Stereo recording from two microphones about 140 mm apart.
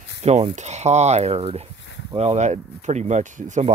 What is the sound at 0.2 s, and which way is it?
Speech, 50° right (ahead or behind).